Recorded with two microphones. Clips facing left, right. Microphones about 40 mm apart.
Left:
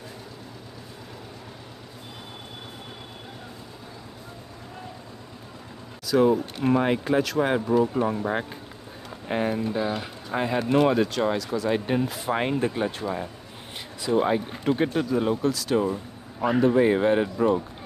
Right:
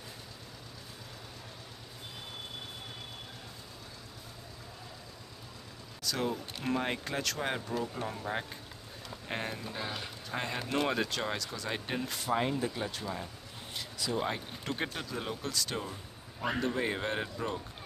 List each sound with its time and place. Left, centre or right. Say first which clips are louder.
6.1 s speech: left 14 dB; centre
10.7 s speech: left 10 dB; centre
12.3 s speech: left 4 dB; left
13.7 s a sound: left 10 dB; left
14.6 s speech: left 12 dB; centre
15.8 s speech: left 15 dB; left